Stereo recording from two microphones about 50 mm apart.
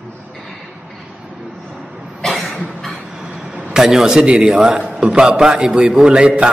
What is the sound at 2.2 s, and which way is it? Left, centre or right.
Cough, centre.